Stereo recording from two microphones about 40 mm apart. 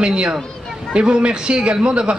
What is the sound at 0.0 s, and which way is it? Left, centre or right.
A man's voice, right.